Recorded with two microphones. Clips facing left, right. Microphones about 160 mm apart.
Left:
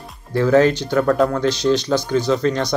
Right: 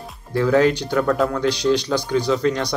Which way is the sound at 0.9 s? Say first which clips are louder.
Left 6 dB; centre (ahead or behind).